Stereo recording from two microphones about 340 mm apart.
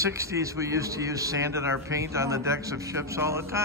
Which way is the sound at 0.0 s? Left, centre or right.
Centre.